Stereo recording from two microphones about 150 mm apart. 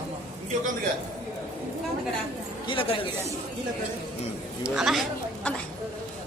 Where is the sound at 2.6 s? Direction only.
35° left (ahead or behind).